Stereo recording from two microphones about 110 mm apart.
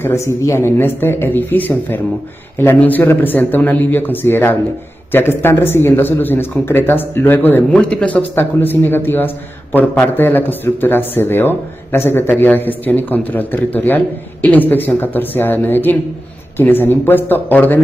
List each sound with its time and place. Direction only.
0.0 s a man's voice: 25° left (ahead or behind)